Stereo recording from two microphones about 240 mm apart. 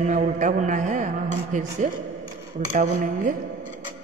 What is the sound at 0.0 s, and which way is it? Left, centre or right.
Speech, right.